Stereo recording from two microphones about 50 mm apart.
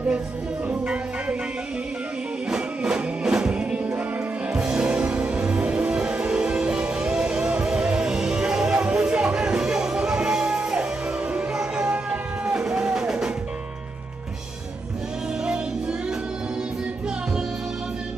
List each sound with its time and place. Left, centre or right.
2.5 s music: centre
15.4 s music: centre